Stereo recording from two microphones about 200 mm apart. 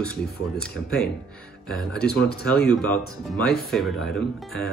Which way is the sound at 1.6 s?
5° left (ahead or behind).